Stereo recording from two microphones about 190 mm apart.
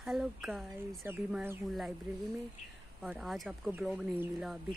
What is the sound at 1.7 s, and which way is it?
Speech, centre (ahead or behind).